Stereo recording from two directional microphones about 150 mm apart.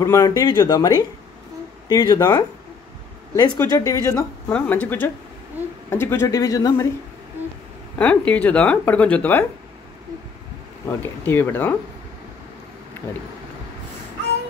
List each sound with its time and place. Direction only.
0.0 s speech: 25° left (ahead or behind)
4.5 s speech: 10° left (ahead or behind)
8.0 s speech: 10° left (ahead or behind)
10.9 s speech: 15° left (ahead or behind)
13.0 s a sound: 15° left (ahead or behind)